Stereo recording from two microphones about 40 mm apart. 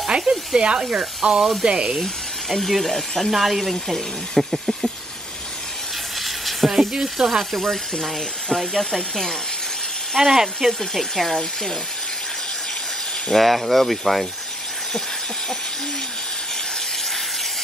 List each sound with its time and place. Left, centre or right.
0.2 s speech: centre
0.6 s speech: right
2.7 s speech: centre
6.1 s sizzle: centre
7.2 s speech: centre
7.9 s speech: centre
10.1 s speech: centre
10.7 s speech: centre
13.3 s speech: centre